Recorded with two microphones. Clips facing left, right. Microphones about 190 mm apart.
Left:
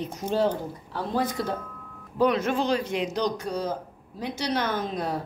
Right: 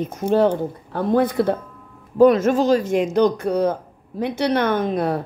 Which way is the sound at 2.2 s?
45° right (ahead or behind).